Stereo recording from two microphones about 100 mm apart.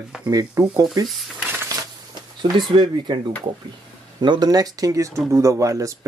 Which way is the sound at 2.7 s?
50° right (ahead or behind).